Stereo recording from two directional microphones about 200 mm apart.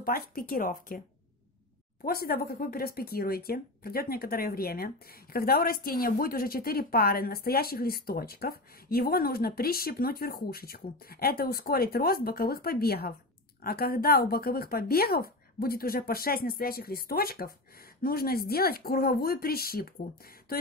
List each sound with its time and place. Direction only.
0.0 s speech: 45° left (ahead or behind)
2.0 s speech: 50° left (ahead or behind)